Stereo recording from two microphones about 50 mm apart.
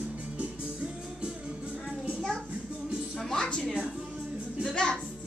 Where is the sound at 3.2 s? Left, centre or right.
Centre.